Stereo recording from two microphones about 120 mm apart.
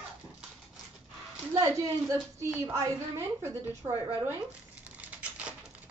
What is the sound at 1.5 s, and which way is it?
A woman's voice, 25° right (ahead or behind).